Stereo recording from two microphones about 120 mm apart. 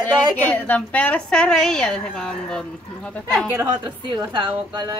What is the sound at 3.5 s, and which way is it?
Speech, 15° right (ahead or behind).